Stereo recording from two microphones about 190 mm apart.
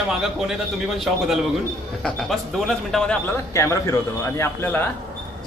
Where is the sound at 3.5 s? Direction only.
15° left (ahead or behind).